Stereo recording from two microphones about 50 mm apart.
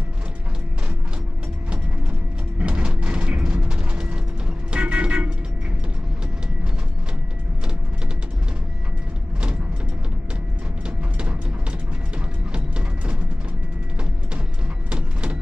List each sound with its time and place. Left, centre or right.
2.6 s mechanisms: right
4.7 s music: right
12.5 s mechanisms: right
14.9 s a sound: centre